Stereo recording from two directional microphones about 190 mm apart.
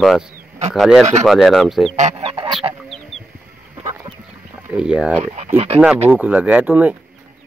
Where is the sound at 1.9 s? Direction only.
35° right (ahead or behind).